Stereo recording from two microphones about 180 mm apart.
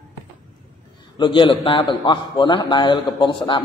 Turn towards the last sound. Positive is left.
turn(degrees=25)  # may be behind; listen again after turning